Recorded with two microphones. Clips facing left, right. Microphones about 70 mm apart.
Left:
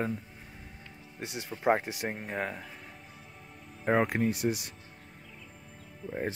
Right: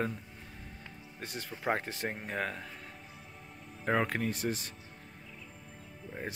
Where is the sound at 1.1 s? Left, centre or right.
Centre.